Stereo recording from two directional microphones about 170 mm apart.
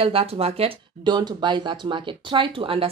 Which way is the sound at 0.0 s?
35° right (ahead or behind).